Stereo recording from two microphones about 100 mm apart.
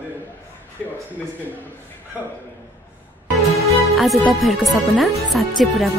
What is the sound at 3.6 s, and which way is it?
Music, 90° left.